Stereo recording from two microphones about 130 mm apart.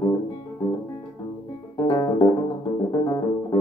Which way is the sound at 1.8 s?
40° left (ahead or behind).